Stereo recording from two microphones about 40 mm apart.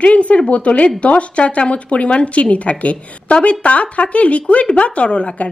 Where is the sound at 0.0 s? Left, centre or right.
Left.